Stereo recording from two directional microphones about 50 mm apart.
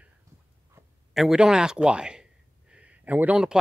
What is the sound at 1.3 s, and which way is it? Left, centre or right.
Speech, centre.